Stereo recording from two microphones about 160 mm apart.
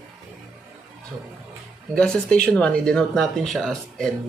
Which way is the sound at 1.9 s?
5° left (ahead or behind).